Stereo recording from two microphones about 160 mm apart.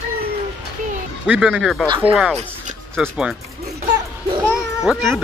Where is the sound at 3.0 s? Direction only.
5° right (ahead or behind).